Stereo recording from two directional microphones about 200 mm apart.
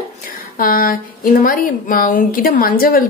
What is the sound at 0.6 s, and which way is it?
A woman's voice, 45° left (ahead or behind).